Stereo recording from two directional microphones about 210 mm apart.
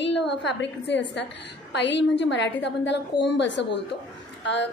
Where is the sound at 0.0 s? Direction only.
55° left (ahead or behind).